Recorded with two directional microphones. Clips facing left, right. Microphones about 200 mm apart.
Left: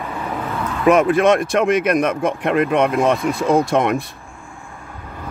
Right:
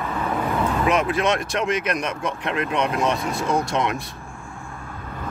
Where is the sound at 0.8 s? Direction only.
50° left (ahead or behind).